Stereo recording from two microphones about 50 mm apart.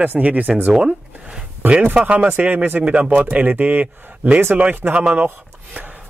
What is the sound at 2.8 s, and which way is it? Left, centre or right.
Speech, right.